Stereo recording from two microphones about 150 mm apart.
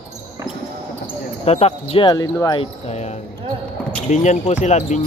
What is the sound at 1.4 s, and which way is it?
Speech, 45° left (ahead or behind).